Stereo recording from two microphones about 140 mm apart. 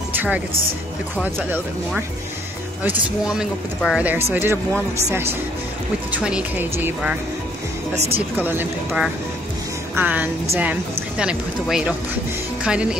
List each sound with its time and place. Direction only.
0.1 s music: 10° right (ahead or behind)
1.2 s speech: 10° right (ahead or behind)
6.1 s speech: 10° right (ahead or behind)
7.9 s speech: 50° right (ahead or behind)
8.4 s speech: 15° right (ahead or behind)